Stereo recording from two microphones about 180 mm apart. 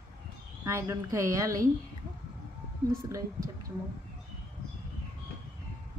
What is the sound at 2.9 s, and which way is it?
Speech, 15° right (ahead or behind).